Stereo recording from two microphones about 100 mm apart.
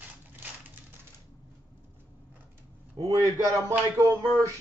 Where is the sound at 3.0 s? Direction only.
35° right (ahead or behind).